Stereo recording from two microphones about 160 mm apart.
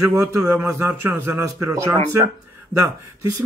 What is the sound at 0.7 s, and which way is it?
Speech, 20° right (ahead or behind).